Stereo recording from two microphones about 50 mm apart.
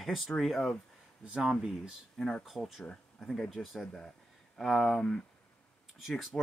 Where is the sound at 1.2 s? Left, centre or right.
Centre.